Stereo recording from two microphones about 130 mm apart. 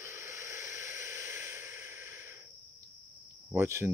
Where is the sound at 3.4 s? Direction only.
20° right (ahead or behind).